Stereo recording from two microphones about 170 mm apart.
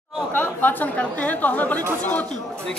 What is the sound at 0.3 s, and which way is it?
Speech, 10° left (ahead or behind).